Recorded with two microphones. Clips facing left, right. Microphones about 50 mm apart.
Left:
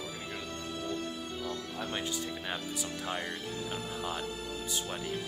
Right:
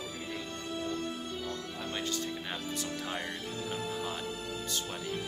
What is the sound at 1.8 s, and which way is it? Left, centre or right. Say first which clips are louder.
Speech: right 1 dB; centre.